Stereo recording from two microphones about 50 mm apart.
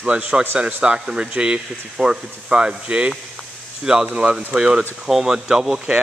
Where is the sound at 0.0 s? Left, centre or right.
Right.